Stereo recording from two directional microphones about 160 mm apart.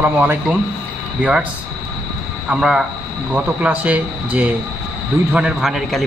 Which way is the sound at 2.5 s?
5° right (ahead or behind).